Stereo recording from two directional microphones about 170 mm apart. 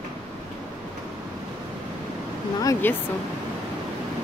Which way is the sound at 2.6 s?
15° left (ahead or behind).